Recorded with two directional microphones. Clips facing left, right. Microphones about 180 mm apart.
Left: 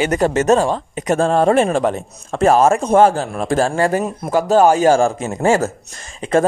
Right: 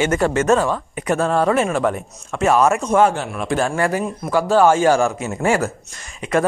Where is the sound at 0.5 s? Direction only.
25° left (ahead or behind).